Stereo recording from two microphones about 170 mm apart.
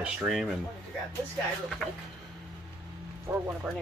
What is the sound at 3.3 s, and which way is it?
Speech, 15° right (ahead or behind).